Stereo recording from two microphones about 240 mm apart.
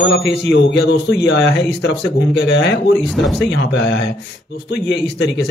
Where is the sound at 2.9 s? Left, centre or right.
Centre.